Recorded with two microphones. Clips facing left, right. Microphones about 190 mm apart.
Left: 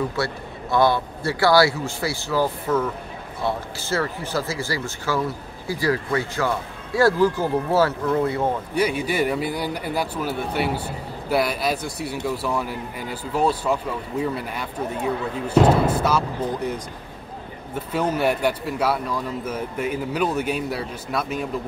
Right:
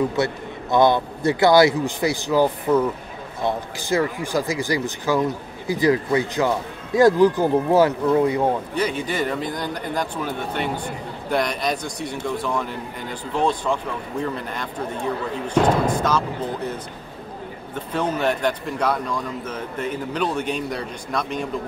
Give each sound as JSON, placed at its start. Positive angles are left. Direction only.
{"t": 0.1, "sound": "a man's voice", "side_deg": -20}
{"t": 8.7, "sound": "speech", "side_deg": 10}
{"t": 17.7, "sound": "speech", "side_deg": 10}